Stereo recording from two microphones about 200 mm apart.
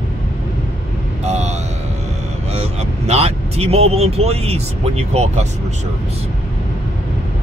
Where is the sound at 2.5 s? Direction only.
30° right (ahead or behind).